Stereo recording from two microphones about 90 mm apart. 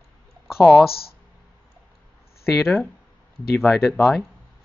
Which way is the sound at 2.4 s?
30° left (ahead or behind).